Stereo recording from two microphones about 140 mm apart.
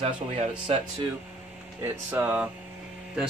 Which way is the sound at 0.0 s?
45° right (ahead or behind).